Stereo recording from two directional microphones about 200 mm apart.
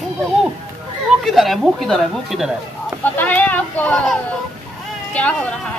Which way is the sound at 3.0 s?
10° left (ahead or behind).